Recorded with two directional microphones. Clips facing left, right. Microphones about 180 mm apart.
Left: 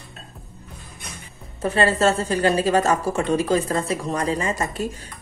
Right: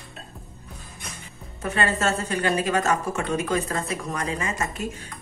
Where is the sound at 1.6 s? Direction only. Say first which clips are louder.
Left 6 dB; 30° left (ahead or behind).